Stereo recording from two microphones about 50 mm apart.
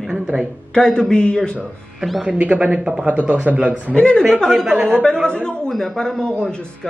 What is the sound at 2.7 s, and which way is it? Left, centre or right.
Speech, centre.